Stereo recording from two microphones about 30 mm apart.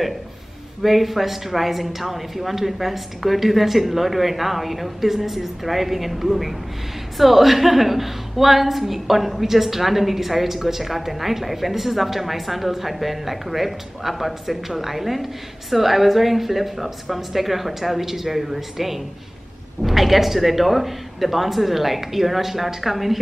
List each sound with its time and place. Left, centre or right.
0.8 s a woman's voice: centre